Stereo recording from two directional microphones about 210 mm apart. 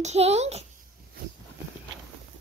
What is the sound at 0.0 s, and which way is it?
Speech, 30° right (ahead or behind).